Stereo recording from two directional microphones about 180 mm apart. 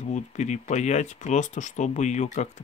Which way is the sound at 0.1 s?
40° left (ahead or behind).